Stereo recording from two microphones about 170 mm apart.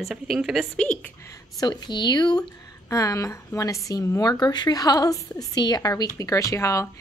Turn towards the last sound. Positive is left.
turn(degrees=20)  # may be behind; listen again after turning